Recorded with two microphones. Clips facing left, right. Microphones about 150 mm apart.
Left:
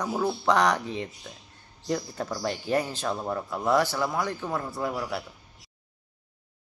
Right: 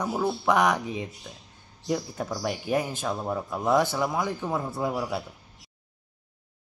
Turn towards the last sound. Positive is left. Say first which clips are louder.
# right 2 dB
turn(degrees=-10)  # may be behind; listen again after turning